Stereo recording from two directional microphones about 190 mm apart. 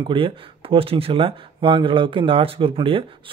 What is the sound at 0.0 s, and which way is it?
Speech, 25° right (ahead or behind).